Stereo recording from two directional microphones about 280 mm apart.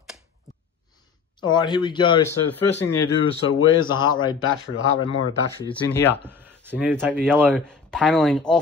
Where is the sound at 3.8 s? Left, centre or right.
Centre.